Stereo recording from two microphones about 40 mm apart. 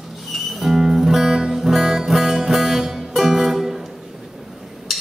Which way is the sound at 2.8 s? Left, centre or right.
Centre.